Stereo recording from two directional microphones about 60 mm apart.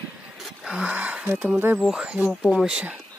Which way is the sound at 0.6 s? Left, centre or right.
Centre.